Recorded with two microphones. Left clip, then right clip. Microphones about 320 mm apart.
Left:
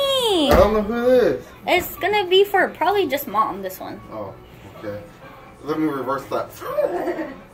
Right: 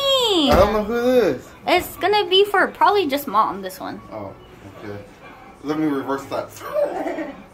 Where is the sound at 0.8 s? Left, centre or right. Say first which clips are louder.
Left 1 dB; right.